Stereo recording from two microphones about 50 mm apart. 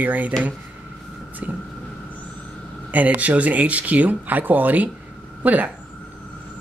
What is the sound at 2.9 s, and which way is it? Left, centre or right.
Speech, right.